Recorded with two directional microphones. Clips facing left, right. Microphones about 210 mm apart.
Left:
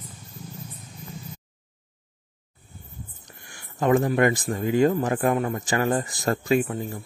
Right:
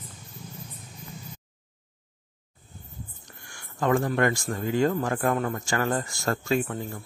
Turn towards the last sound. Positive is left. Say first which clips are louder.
# left 4 dB
turn(degrees=20)  # may be behind; listen again after turning